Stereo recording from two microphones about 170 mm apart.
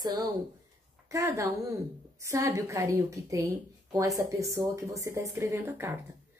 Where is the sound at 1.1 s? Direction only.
20° right (ahead or behind).